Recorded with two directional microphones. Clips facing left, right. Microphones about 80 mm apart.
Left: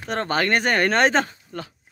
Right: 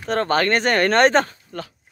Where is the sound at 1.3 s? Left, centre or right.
Centre.